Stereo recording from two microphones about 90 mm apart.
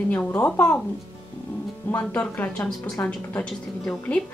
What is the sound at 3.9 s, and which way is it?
Speech, 10° left (ahead or behind).